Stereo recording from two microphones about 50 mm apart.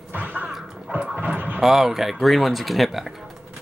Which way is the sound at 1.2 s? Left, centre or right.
Right.